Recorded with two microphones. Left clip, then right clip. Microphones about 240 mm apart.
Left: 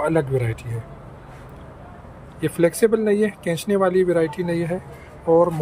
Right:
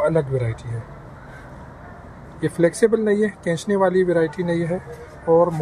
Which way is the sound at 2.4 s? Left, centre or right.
Centre.